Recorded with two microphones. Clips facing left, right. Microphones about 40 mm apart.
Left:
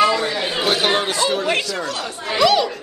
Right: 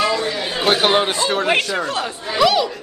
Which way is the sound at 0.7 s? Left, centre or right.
Right.